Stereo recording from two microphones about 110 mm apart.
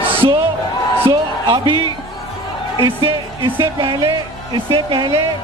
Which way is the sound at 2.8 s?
50° right (ahead or behind).